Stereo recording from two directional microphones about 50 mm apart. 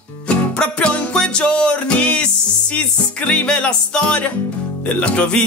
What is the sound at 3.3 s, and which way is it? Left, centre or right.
Music, centre.